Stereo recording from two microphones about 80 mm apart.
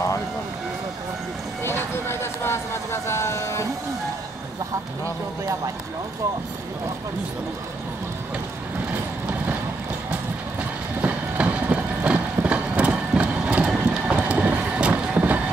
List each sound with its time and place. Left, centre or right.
1.6 s vehicle: left
11.0 s vehicle: centre
13.7 s train: centre